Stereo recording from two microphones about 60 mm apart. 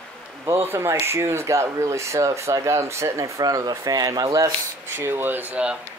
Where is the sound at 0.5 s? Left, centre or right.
Right.